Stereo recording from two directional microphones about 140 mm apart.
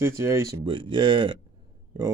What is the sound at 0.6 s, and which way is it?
Speech, 35° right (ahead or behind).